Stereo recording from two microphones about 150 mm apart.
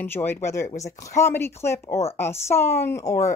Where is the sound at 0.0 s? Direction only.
15° left (ahead or behind).